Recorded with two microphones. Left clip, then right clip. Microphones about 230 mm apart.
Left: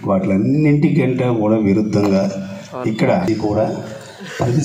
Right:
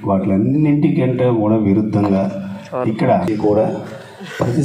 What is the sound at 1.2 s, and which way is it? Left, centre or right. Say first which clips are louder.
Speech: right 2 dB; left.